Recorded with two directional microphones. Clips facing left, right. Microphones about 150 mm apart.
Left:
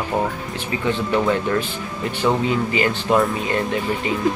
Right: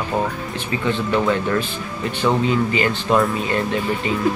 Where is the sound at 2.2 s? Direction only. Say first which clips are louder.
Right 1 dB; 20° left (ahead or behind).